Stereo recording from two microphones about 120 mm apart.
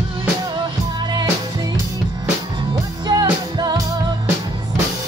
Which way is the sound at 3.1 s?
35° right (ahead or behind).